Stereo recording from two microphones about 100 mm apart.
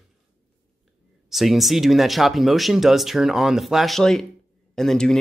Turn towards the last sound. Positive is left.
turn(degrees=5)  # may be behind; listen again after turning